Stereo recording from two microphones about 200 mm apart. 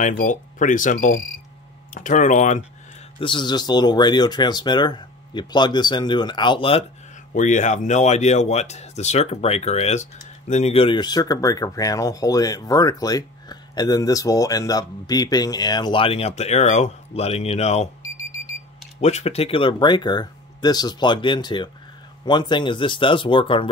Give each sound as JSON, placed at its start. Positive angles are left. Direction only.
{"t": 0.2, "sound": "speech", "side_deg": 40}
{"t": 3.2, "sound": "speech", "side_deg": 25}
{"t": 7.3, "sound": "speech", "side_deg": 40}
{"t": 18.9, "sound": "speech", "side_deg": 35}